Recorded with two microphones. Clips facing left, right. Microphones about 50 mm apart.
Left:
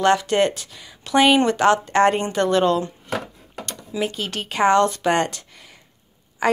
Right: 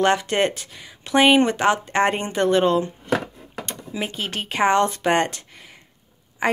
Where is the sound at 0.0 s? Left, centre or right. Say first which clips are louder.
Left 2 dB; right.